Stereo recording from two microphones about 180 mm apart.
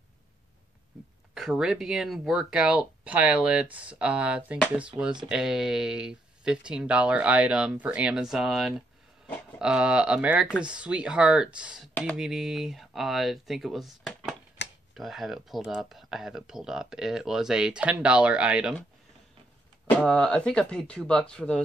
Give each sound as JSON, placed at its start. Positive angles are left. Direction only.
{"t": 1.3, "sound": "speech", "side_deg": -5}
{"t": 14.6, "sound": "tick-tock", "side_deg": 75}
{"t": 15.0, "sound": "speech", "side_deg": 0}
{"t": 19.9, "sound": "speech", "side_deg": 5}